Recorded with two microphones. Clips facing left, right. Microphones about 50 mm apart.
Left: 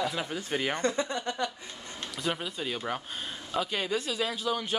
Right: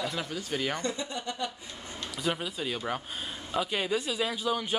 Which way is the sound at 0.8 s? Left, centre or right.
Left.